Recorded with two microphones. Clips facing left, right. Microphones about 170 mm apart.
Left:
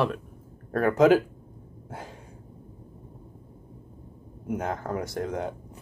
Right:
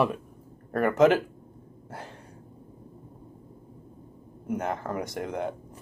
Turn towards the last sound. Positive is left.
turn(degrees=0)  # may be behind; listen again after turning